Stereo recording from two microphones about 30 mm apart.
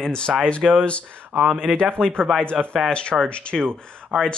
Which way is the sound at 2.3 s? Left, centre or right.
Centre.